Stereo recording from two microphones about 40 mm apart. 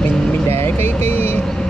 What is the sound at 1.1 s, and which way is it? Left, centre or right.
Speech, left.